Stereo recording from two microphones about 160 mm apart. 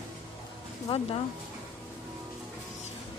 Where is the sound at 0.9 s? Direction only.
35° left (ahead or behind).